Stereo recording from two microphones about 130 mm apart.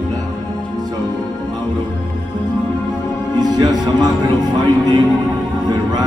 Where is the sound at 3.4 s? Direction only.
30° right (ahead or behind).